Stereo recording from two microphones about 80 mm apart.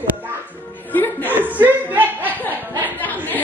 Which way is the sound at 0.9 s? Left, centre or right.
Left.